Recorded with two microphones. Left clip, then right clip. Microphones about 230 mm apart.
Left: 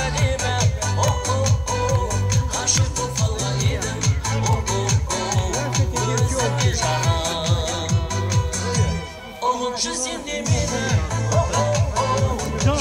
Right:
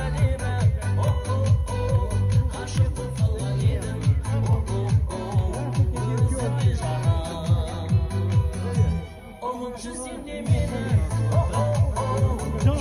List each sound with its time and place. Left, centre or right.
0.0 s music: centre
9.4 s music: centre